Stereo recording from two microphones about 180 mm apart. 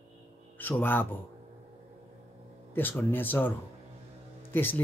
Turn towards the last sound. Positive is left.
turn(degrees=10)  # may be behind; listen again after turning